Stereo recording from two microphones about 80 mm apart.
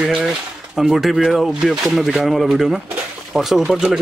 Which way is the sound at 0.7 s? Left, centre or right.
Centre.